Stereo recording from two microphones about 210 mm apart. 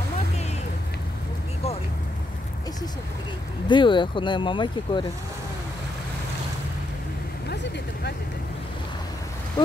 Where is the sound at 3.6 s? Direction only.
20° left (ahead or behind).